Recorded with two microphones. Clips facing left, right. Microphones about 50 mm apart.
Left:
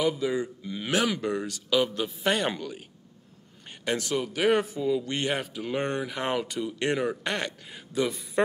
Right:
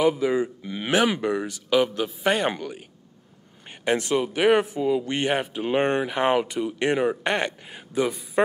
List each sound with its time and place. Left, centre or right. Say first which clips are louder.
0.0 s speech: right 5 dB; right
3.8 s speech: right 5 dB; right